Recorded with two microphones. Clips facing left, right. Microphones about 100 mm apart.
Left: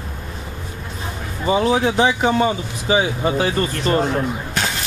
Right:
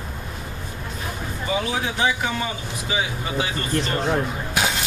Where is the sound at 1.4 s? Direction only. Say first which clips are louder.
Left 8 dB; 35° left (ahead or behind).